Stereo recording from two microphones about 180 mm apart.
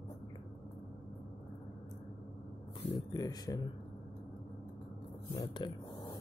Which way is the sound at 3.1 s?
20° left (ahead or behind).